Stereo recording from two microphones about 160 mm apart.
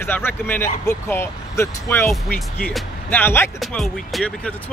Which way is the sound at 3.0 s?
10° left (ahead or behind).